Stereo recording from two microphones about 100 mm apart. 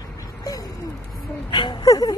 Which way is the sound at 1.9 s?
40° left (ahead or behind).